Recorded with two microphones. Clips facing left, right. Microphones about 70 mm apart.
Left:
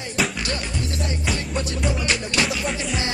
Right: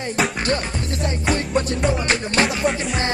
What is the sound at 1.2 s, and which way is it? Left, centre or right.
Music, right.